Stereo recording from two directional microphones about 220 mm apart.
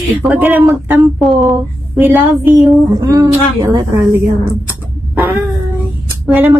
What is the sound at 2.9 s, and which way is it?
Speech, 15° right (ahead or behind).